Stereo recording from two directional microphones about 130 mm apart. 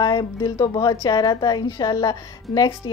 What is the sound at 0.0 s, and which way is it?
Speech, 35° left (ahead or behind).